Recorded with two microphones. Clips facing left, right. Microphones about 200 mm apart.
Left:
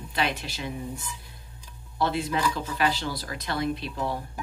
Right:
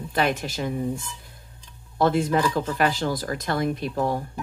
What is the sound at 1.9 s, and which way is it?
Speech, 45° right (ahead or behind).